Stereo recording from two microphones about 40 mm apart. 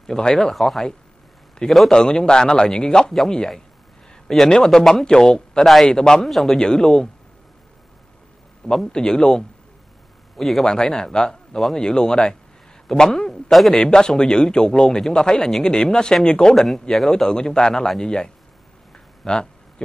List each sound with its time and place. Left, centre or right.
0.0 s a man's voice: centre
1.9 s a man's voice: centre
6.6 s a man's voice: centre
8.9 s a man's voice: centre
10.3 s a man's voice: centre
10.6 s a man's voice: centre
13.7 s a man's voice: centre
16.5 s a man's voice: centre
17.1 s a man's voice: centre